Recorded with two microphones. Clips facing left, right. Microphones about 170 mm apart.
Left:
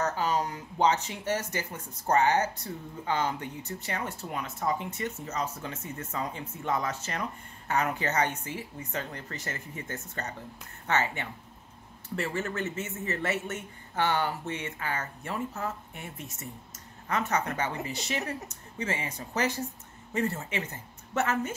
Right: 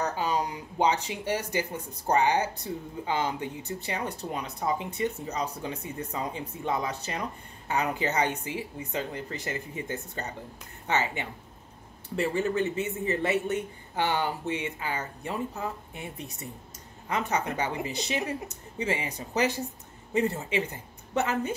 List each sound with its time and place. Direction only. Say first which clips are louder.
0.0 s a man's voice: even; 15° right (ahead or behind)